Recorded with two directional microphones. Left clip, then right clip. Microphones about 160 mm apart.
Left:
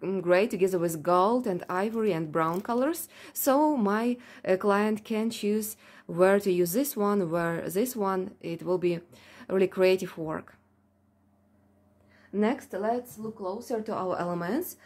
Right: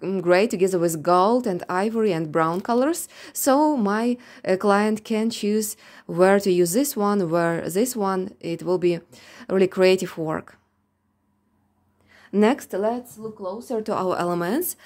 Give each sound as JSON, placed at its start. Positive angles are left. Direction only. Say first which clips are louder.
{"t": 0.0, "sound": "speech", "louder": "right 5 dB", "side_deg": -30}
{"t": 12.3, "sound": "a woman's voice", "louder": "right 8 dB", "side_deg": -90}
{"t": 13.4, "sound": "speech", "louder": "right 3 dB", "side_deg": -40}
{"t": 13.7, "sound": "a woman's voice", "louder": "right 8 dB", "side_deg": -90}